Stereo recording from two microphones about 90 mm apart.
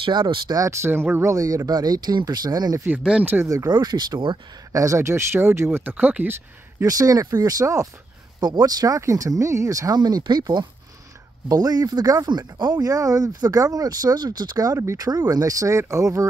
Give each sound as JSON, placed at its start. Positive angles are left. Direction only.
{"t": 0.0, "sound": "speech", "side_deg": -65}
{"t": 0.6, "sound": "speech", "side_deg": -35}
{"t": 1.3, "sound": "speech", "side_deg": -40}
{"t": 3.0, "sound": "speech", "side_deg": -10}
{"t": 3.4, "sound": "speech", "side_deg": -40}
{"t": 3.7, "sound": "speech", "side_deg": -50}
{"t": 4.7, "sound": "speech", "side_deg": -35}
{"t": 6.8, "sound": "speech", "side_deg": -40}
{"t": 8.4, "sound": "speech", "side_deg": -55}